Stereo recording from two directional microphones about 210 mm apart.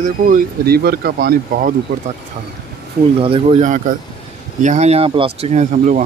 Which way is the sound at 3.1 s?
25° right (ahead or behind).